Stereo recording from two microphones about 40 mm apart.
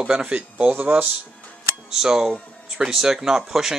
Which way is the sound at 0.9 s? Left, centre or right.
Right.